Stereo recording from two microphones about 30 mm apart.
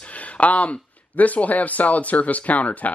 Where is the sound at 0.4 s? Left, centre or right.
Left.